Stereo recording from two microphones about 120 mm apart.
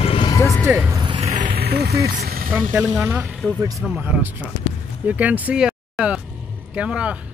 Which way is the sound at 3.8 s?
10° right (ahead or behind).